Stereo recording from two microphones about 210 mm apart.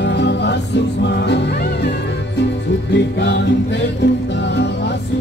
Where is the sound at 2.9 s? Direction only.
55° left (ahead or behind).